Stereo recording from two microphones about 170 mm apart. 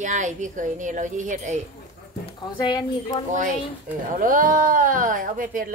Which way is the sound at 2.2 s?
25° left (ahead or behind).